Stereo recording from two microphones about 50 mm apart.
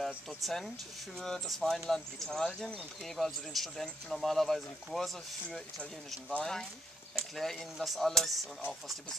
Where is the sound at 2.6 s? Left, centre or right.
Centre.